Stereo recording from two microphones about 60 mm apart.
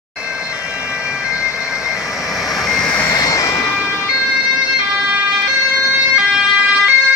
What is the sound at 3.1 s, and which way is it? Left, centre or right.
Vehicle, left.